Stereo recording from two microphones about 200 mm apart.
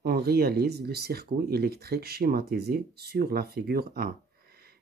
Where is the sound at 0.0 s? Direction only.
50° right (ahead or behind).